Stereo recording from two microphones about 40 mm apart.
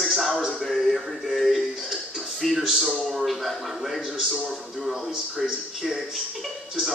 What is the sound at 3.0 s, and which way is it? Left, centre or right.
A man's voice, centre.